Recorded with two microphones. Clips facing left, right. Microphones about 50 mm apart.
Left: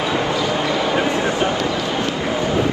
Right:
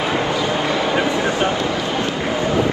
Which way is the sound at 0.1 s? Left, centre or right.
Right.